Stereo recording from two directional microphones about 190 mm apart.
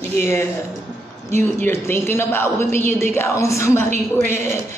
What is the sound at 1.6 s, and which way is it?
Speech, 15° left (ahead or behind).